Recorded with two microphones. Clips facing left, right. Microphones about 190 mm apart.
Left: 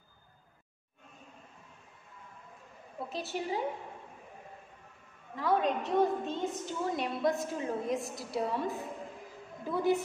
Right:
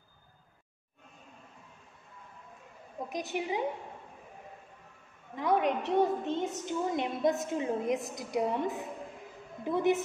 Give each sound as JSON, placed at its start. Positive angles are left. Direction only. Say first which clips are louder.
{"t": 3.0, "sound": "a woman's voice", "louder": "right 2 dB", "side_deg": -15}
{"t": 5.3, "sound": "a woman's voice", "louder": "right 1 dB", "side_deg": -20}